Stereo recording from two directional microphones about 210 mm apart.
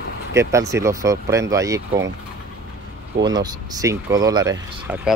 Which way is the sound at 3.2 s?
20° right (ahead or behind).